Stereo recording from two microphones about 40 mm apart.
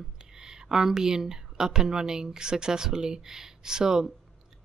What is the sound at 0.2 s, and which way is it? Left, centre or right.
Speech, centre.